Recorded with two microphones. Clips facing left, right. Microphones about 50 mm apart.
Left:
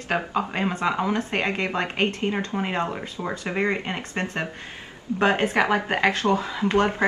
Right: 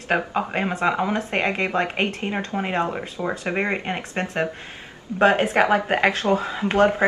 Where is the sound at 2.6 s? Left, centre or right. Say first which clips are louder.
Right 2 dB; centre.